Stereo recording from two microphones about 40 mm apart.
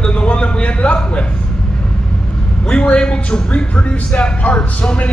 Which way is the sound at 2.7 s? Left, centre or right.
Left.